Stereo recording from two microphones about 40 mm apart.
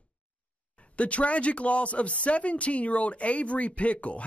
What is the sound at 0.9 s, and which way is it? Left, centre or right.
A man's voice, left.